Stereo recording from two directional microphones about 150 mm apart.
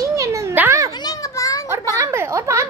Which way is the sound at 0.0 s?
20° right (ahead or behind).